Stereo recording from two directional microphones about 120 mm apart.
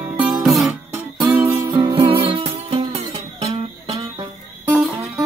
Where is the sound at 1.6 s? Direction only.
40° right (ahead or behind).